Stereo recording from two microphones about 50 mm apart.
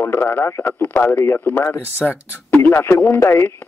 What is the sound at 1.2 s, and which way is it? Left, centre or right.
Speech, left.